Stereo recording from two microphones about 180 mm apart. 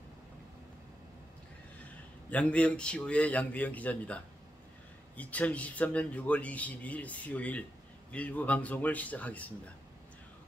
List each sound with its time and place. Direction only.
2.3 s a man's voice: 5° left (ahead or behind)